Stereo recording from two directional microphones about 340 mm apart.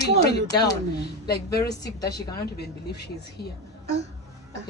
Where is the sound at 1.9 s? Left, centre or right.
Centre.